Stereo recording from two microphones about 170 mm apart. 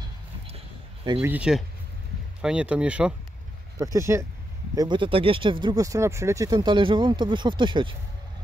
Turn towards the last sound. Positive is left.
turn(degrees=-30)  # may be behind; listen again after turning